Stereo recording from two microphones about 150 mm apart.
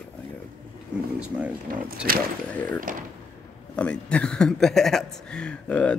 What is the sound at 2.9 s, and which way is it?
Speech, 65° right (ahead or behind).